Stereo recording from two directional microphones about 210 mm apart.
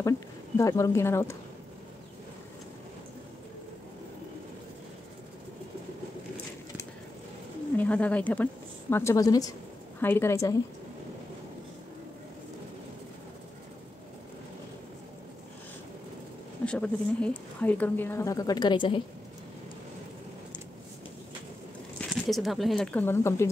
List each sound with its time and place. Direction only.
0.6 s speech: 15° left (ahead or behind)
7.7 s speech: 5° left (ahead or behind)
16.6 s speech: 5° left (ahead or behind); by 18.9 s 20° left (ahead or behind)
22.1 s speech: centre (ahead or behind)